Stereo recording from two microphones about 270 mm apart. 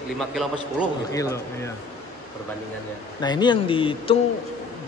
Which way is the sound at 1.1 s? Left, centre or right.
Centre.